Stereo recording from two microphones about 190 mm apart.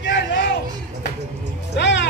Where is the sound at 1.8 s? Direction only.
65° left (ahead or behind).